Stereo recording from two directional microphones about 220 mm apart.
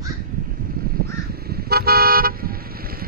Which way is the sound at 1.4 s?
45° right (ahead or behind).